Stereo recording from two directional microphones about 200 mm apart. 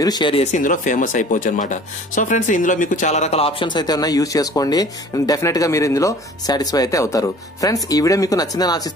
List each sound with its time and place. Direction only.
0.0 s speech: 20° left (ahead or behind)
0.6 s speech: 40° left (ahead or behind); by 8.9 s 20° left (ahead or behind)